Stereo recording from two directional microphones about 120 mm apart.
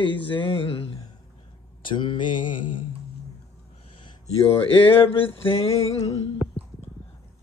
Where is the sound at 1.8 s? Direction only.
40° left (ahead or behind).